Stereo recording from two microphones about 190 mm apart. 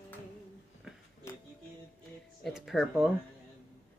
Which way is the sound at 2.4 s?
Centre (ahead or behind).